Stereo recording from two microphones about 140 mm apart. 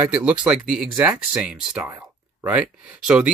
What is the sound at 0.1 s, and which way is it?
Speech, 10° right (ahead or behind).